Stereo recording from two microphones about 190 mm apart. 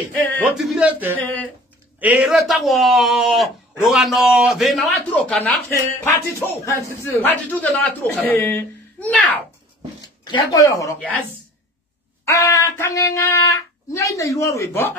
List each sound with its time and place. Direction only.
0.4 s speech: 5° right (ahead or behind)
1.1 s a man's voice: 10° left (ahead or behind)
2.0 s a man's voice: 5° right (ahead or behind); by 9.2 s 10° left (ahead or behind)
10.2 s a man's voice: 20° left (ahead or behind)
12.3 s a man's voice: 15° left (ahead or behind)